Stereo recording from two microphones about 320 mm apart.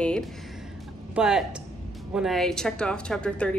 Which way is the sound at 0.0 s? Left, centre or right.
Centre.